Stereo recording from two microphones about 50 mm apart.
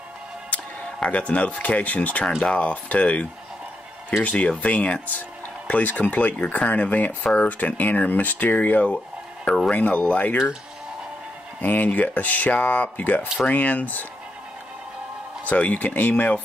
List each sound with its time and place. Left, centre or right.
0.5 s speech: left
11.6 s speech: left
15.4 s speech: left